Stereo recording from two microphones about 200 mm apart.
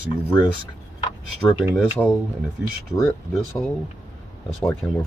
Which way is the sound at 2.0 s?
5° left (ahead or behind).